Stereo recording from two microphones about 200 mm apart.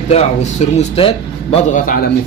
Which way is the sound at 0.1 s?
35° left (ahead or behind).